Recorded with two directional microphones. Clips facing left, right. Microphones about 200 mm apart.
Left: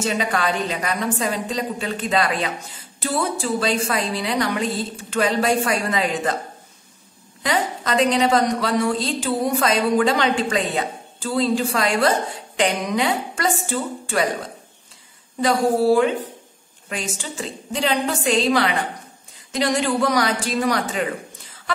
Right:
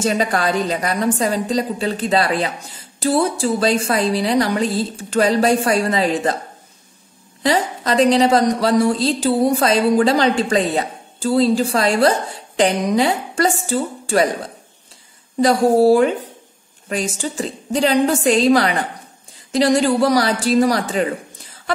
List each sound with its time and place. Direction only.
0.0 s a woman's voice: 40° right (ahead or behind)
7.4 s a woman's voice: 35° right (ahead or behind)
15.4 s a woman's voice: 40° right (ahead or behind)